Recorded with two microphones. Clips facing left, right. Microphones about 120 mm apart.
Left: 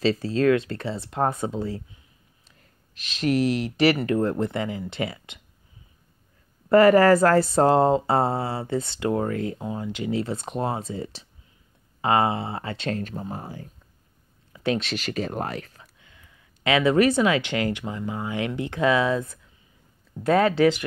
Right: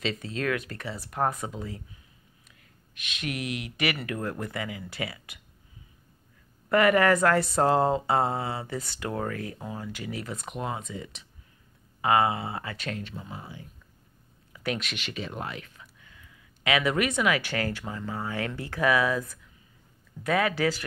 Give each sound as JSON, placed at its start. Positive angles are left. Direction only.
{"t": 0.0, "sound": "speech", "side_deg": 35}
{"t": 2.9, "sound": "speech", "side_deg": 35}
{"t": 6.7, "sound": "speech", "side_deg": 30}
{"t": 13.0, "sound": "speech", "side_deg": 40}
{"t": 14.5, "sound": "speech", "side_deg": 30}
{"t": 16.0, "sound": "speech", "side_deg": 30}